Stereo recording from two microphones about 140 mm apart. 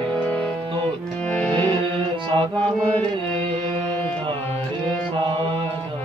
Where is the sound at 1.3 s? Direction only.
10° left (ahead or behind).